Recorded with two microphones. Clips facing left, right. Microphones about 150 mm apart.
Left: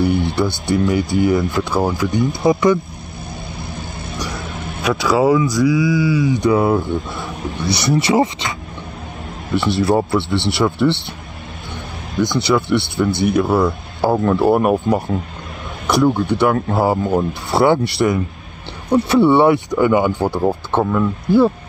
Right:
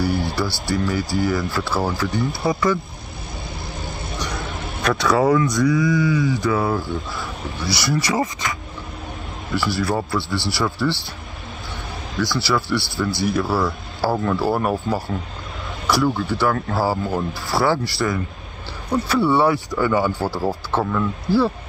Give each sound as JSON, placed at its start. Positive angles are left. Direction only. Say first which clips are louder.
{"t": 0.0, "sound": "speech", "louder": "left 5 dB", "side_deg": 20}
{"t": 4.4, "sound": "vehicle", "louder": "left 1 dB", "side_deg": 0}
{"t": 5.5, "sound": "speech", "louder": "left 3 dB", "side_deg": 5}
{"t": 6.2, "sound": "speech", "louder": "left 5 dB", "side_deg": 20}
{"t": 12.2, "sound": "speech", "louder": "left 5 dB", "side_deg": 20}